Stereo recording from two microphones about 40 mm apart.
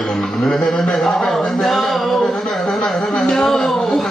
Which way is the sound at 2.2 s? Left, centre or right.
Centre.